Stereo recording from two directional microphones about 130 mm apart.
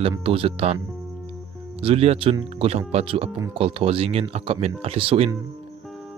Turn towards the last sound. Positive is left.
turn(degrees=-45)  # may be behind; listen again after turning